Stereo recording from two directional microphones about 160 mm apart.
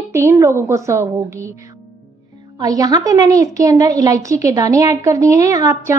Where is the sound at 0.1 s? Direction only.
15° right (ahead or behind).